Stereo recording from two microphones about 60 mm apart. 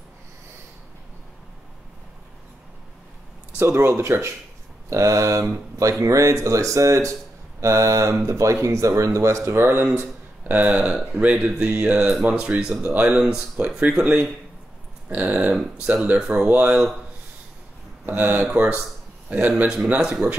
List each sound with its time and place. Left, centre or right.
3.5 s speech: right
4.8 s speech: right
10.5 s speech: right
13.2 s speech: centre
15.5 s speech: centre
15.9 s speech: right
18.0 s a man's voice: right
20.0 s speech: centre